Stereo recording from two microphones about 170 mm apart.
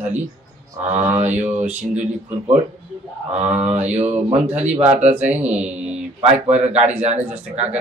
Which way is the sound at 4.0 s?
40° right (ahead or behind).